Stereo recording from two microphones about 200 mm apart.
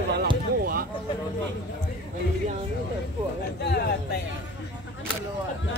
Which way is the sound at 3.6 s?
55° left (ahead or behind).